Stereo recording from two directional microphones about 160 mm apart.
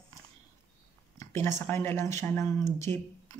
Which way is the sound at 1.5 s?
15° left (ahead or behind).